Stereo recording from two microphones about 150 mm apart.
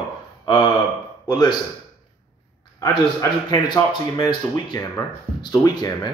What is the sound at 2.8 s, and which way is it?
Speech, 25° left (ahead or behind).